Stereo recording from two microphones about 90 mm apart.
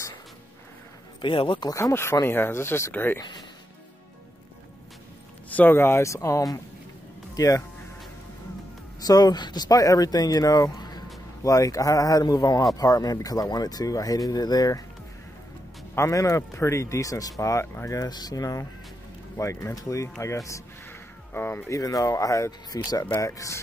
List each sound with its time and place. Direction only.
1.2 s speech: 70° left (ahead or behind)
1.7 s speech: 30° left (ahead or behind)
5.6 s speech: 25° left (ahead or behind)
9.0 s speech: 45° left (ahead or behind)
11.4 s speech: 40° left (ahead or behind)
15.9 s speech: 35° left (ahead or behind)
21.3 s speech: 25° left (ahead or behind)